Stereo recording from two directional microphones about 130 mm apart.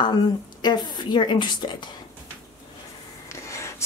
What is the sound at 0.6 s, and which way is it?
A woman's voice, 35° left (ahead or behind).